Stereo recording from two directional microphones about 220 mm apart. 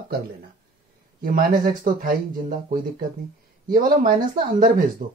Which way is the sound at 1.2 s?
40° right (ahead or behind).